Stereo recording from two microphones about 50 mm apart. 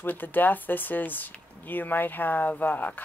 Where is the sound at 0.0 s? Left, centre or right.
Left.